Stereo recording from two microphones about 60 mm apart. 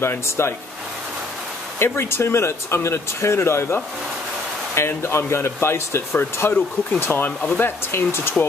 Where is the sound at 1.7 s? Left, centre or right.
Left.